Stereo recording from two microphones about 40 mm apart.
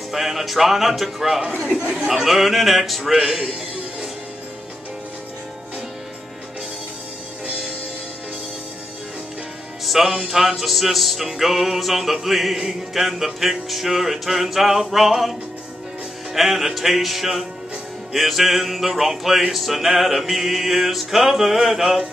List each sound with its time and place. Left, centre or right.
0.1 s music: centre
1.7 s speech: right
2.0 s music: centre
9.8 s music: centre
16.3 s music: centre